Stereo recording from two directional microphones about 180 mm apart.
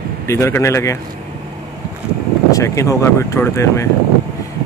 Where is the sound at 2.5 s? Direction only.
15° left (ahead or behind).